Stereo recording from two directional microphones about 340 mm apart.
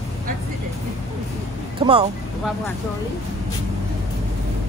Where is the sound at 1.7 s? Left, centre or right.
Centre.